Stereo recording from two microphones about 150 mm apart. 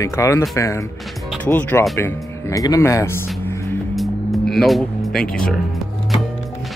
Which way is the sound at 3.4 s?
15° left (ahead or behind).